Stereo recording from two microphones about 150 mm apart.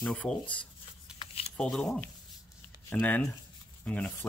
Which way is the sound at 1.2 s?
40° left (ahead or behind).